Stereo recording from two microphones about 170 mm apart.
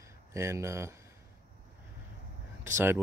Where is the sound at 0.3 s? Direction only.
15° right (ahead or behind).